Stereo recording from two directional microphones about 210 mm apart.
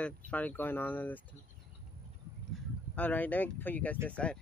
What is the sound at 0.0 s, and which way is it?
Speech, 5° left (ahead or behind).